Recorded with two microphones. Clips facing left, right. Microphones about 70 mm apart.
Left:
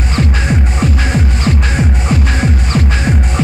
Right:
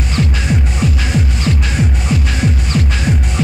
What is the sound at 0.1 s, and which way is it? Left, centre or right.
Music, left.